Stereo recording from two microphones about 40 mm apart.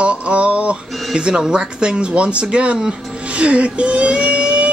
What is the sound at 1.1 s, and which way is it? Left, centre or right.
Speech, right.